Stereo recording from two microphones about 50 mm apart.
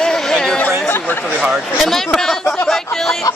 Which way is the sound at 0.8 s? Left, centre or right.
Left.